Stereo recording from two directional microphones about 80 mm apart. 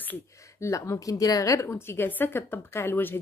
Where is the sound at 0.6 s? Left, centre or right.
Left.